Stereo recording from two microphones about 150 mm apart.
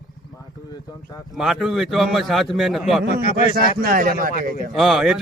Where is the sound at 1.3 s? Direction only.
Centre (ahead or behind).